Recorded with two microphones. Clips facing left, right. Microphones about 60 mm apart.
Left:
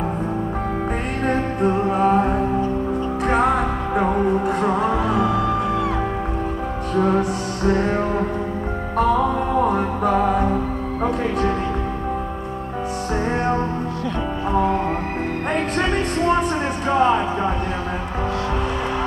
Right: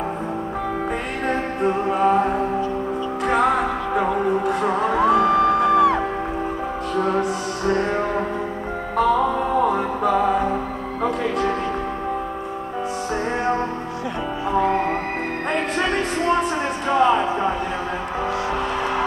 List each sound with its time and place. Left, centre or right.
1.3 s music: centre
4.9 s music: right
5.2 s music: right
7.2 s music: centre
8.9 s music: centre
9.7 s music: centre
14.6 s music: right
16.2 s music: centre